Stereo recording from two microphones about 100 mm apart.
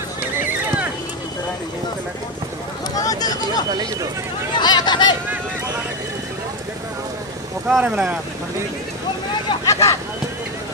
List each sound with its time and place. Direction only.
0.4 s horse: 20° right (ahead or behind)
3.0 s a sound: 40° left (ahead or behind)
4.6 s speech: 45° left (ahead or behind)
7.6 s speech: 10° right (ahead or behind)
9.7 s vehicle: 30° left (ahead or behind)